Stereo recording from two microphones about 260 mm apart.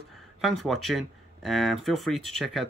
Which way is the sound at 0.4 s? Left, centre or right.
Centre.